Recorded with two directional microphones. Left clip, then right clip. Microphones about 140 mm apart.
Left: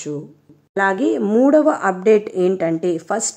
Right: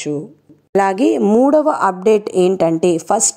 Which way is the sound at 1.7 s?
25° right (ahead or behind).